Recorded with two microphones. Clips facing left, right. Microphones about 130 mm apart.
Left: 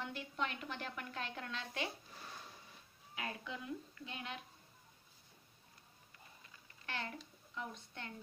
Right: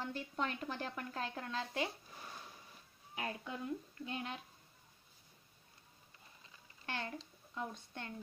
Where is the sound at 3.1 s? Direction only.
35° right (ahead or behind).